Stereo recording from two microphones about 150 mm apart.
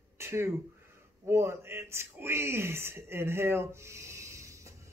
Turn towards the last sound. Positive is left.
turn(degrees=-20)  # may be behind; listen again after turning